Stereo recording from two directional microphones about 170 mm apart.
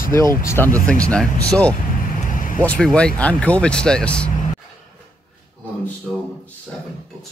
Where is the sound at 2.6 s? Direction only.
5° left (ahead or behind).